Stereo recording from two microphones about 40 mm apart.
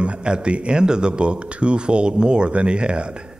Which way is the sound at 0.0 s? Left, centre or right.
Right.